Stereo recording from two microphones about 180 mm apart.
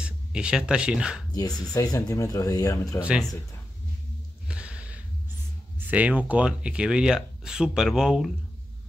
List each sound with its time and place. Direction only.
0.0 s speech: 5° right (ahead or behind)
1.7 s speech: 20° left (ahead or behind)
3.0 s speech: centre (ahead or behind)
4.5 s a sound: 5° right (ahead or behind)
5.9 s speech: 10° right (ahead or behind)